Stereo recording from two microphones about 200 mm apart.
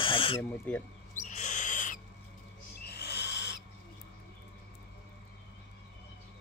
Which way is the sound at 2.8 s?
55° left (ahead or behind).